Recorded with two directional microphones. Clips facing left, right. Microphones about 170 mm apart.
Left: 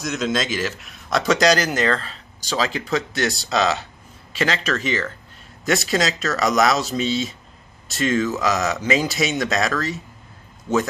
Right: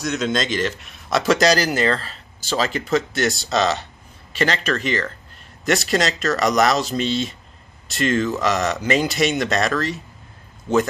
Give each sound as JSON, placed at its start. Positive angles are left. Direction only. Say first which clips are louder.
{"t": 0.0, "sound": "a man's voice", "louder": "right 1 dB", "side_deg": 0}